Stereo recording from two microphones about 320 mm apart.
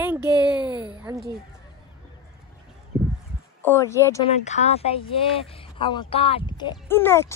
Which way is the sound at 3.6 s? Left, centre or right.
Centre.